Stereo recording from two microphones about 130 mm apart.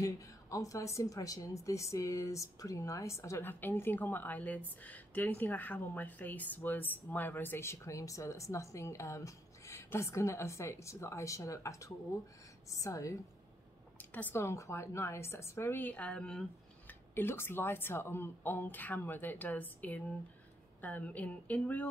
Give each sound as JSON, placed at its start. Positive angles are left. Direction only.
{"t": 0.0, "sound": "speech", "side_deg": 25}
{"t": 13.9, "sound": "speech", "side_deg": 15}
{"t": 17.1, "sound": "speech", "side_deg": 20}